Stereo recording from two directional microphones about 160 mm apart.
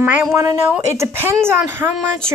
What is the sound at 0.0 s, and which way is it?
A woman's voice, 10° right (ahead or behind).